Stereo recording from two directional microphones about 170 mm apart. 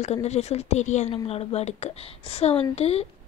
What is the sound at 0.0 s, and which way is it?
Speech, 40° left (ahead or behind).